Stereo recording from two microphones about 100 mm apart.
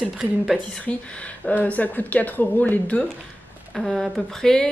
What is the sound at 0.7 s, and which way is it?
Speech, 10° left (ahead or behind).